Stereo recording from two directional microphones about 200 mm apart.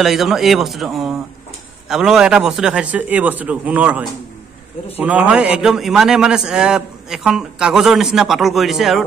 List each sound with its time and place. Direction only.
0.0 s a man's voice: centre (ahead or behind)